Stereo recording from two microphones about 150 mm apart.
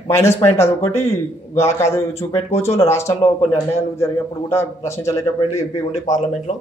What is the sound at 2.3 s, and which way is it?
Speech, 40° left (ahead or behind).